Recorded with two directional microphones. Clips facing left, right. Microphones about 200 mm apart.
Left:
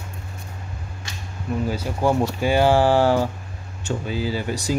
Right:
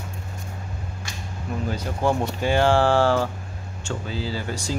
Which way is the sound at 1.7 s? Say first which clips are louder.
Left 1 dB; 10° left (ahead or behind).